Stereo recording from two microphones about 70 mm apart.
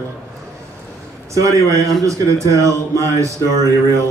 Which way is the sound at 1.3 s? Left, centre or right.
Right.